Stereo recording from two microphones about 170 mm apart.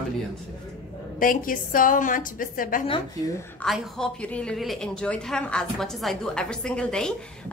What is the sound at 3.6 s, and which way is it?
A woman's voice, centre (ahead or behind).